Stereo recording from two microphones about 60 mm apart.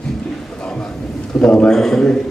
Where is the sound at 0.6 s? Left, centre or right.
Centre.